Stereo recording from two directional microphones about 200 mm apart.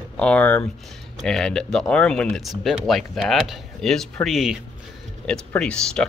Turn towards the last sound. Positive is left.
turn(degrees=5)  # may be behind; listen again after turning